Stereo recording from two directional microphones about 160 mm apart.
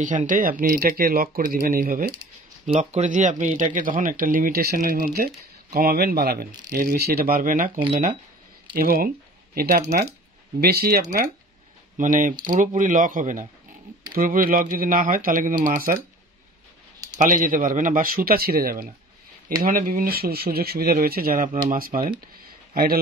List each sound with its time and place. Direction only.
0.0 s speech: 55° right (ahead or behind)
2.6 s speech: 45° right (ahead or behind); by 11.0 s 75° right (ahead or behind)
12.0 s speech: 55° right (ahead or behind)
17.2 s speech: 55° right (ahead or behind); by 18.9 s 70° right (ahead or behind)
19.5 s speech: 60° right (ahead or behind)